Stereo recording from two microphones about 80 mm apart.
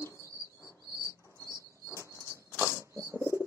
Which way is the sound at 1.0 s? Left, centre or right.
Left.